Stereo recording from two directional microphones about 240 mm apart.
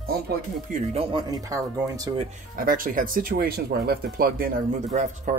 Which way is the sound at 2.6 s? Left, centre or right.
Right.